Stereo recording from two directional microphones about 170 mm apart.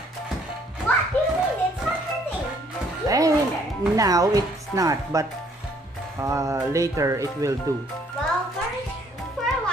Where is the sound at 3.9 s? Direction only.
20° right (ahead or behind).